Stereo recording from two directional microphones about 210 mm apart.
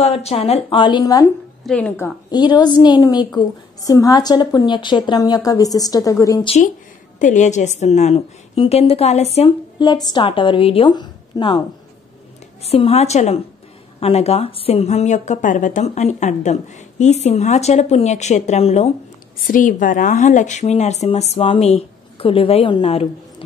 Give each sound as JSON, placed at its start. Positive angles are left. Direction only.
{"t": 0.0, "sound": "a woman's voice", "side_deg": 30}
{"t": 1.7, "sound": "a woman's voice", "side_deg": 5}
{"t": 2.3, "sound": "a woman's voice", "side_deg": 20}
{"t": 7.2, "sound": "a woman's voice", "side_deg": 35}
{"t": 12.6, "sound": "a woman's voice", "side_deg": 30}
{"t": 19.4, "sound": "a woman's voice", "side_deg": 40}